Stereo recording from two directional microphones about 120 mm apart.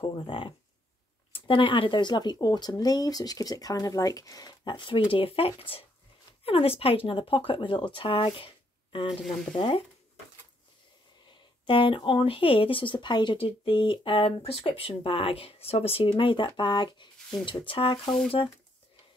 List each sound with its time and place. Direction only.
0.0 s speech: 45° left (ahead or behind)
9.2 s speech: centre (ahead or behind)
9.6 s speech: 50° left (ahead or behind)
11.6 s speech: 45° left (ahead or behind)